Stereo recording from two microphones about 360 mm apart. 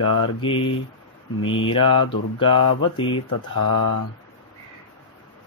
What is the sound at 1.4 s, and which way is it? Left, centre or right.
Speech, left.